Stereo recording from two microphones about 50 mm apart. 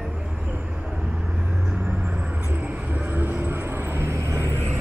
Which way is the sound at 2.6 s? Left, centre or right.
Right.